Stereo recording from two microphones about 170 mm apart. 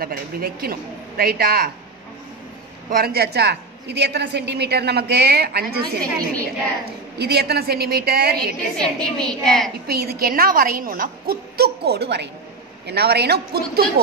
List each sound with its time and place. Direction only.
0.0 s a woman's voice: 60° right (ahead or behind)
2.9 s a woman's voice: 65° right (ahead or behind)
7.2 s a woman's voice: 75° right (ahead or behind)
8.7 s a woman's voice: 5° left (ahead or behind)
9.8 s a woman's voice: 65° right (ahead or behind)